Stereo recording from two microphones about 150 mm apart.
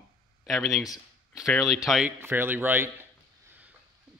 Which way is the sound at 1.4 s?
Centre (ahead or behind).